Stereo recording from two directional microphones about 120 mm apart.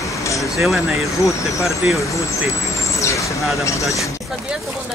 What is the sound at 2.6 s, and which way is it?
Vehicle, 25° left (ahead or behind).